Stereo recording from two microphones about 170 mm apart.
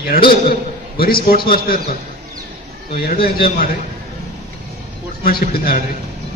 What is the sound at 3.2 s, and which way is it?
Speech, 65° left (ahead or behind).